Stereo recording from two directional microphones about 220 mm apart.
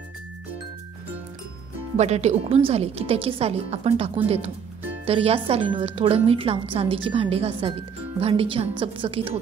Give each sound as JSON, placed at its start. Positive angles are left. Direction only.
{"t": 2.0, "sound": "speech", "side_deg": -30}